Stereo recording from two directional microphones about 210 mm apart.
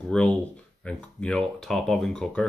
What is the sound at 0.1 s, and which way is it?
Speech, 5° left (ahead or behind).